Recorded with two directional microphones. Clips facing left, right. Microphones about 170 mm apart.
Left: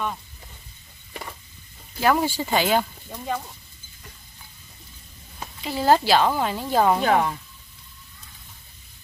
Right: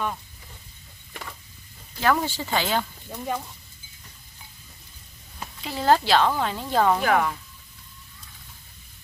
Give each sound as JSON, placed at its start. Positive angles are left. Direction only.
{"t": 2.0, "sound": "speech", "side_deg": 10}
{"t": 3.1, "sound": "speech", "side_deg": -5}
{"t": 5.6, "sound": "speech", "side_deg": 5}
{"t": 7.0, "sound": "speech", "side_deg": 25}